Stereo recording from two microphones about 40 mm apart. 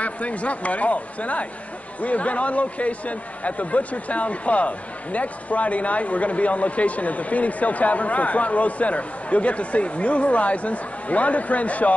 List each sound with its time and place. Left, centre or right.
0.0 s a man's voice: left